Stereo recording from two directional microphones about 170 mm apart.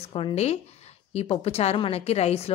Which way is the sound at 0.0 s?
35° left (ahead or behind).